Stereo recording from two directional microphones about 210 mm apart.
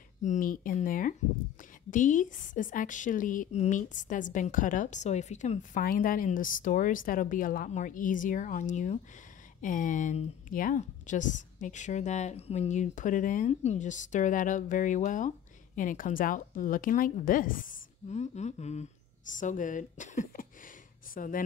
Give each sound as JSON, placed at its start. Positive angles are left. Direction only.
{"t": 0.2, "sound": "speech", "side_deg": 35}